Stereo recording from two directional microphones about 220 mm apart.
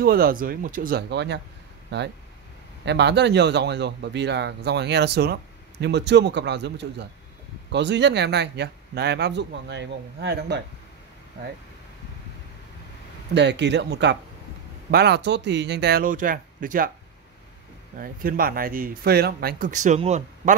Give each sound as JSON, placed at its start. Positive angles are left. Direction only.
{"t": 0.0, "sound": "speech", "side_deg": -40}
{"t": 13.3, "sound": "speech", "side_deg": -50}
{"t": 17.9, "sound": "speech", "side_deg": -40}